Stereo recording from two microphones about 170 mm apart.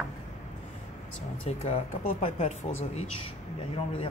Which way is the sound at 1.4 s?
35° left (ahead or behind).